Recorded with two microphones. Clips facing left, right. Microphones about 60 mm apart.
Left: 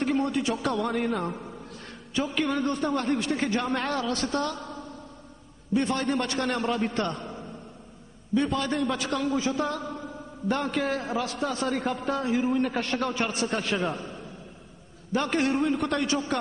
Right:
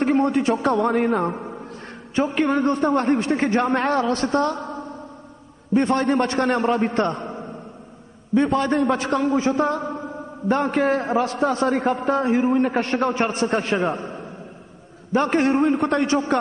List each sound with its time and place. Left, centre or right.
0.0 s a man's voice: right